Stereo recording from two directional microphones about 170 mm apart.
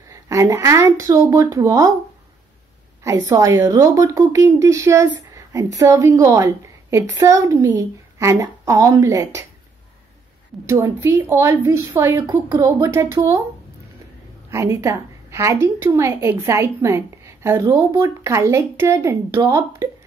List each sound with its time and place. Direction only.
0.1 s a woman's voice: 20° right (ahead or behind)
3.0 s a woman's voice: 20° right (ahead or behind)
10.7 s a woman's voice: 15° right (ahead or behind)
14.5 s a woman's voice: 15° right (ahead or behind)